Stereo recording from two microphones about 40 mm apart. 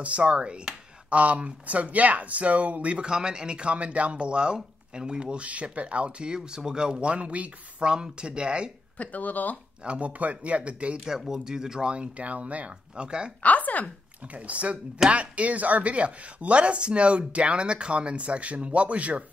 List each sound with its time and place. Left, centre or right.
0.0 s speech: right
1.1 s speech: right
3.1 s speech: centre
7.1 s speech: right
7.8 s speech: right
8.9 s speech: left
9.8 s speech: right
11.1 s speech: centre
11.9 s speech: right
12.9 s speech: right
13.4 s speech: left
14.2 s speech: right